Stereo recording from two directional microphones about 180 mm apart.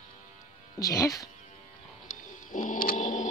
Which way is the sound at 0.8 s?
20° left (ahead or behind).